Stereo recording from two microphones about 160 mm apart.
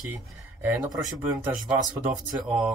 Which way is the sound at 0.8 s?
20° right (ahead or behind).